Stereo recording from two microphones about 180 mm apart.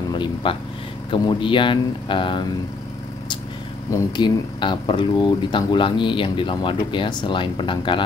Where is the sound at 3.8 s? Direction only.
20° left (ahead or behind).